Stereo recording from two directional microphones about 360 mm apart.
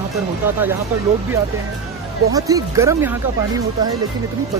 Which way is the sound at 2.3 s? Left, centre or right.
Centre.